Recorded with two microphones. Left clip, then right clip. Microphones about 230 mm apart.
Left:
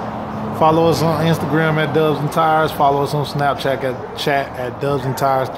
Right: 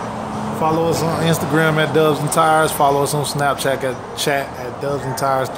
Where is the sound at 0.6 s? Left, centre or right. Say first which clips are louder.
Left 4 dB; centre.